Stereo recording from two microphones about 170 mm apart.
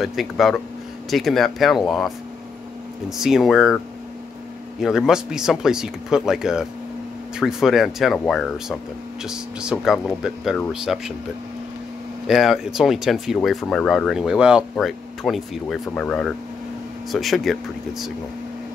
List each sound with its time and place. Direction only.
0.0 s speech: centre (ahead or behind)
3.2 s speech: centre (ahead or behind)
12.3 s speech: centre (ahead or behind)